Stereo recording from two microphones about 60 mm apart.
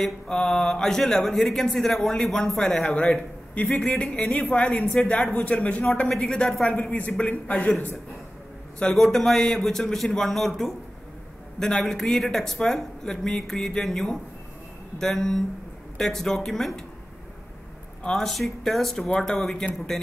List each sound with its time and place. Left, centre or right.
0.0 s a man's voice: centre
3.5 s speech: left
3.8 s speech: centre
6.0 s speech: centre
6.8 s speech: left
8.9 s a man's voice: centre
18.0 s speech: centre